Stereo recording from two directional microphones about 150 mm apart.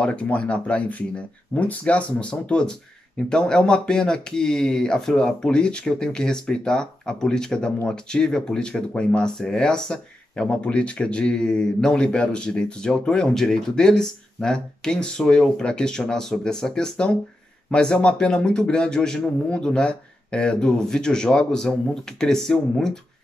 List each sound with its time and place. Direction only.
0.0 s speech: 10° left (ahead or behind)